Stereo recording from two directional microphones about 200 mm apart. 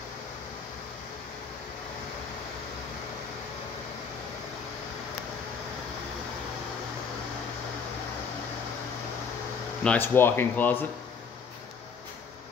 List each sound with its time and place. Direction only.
9.8 s speech: 10° left (ahead or behind)